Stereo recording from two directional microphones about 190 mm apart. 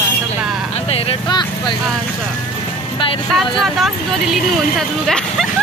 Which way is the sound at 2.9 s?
30° left (ahead or behind).